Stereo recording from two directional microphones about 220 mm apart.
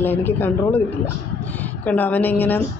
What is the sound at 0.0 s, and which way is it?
Speech, 10° left (ahead or behind).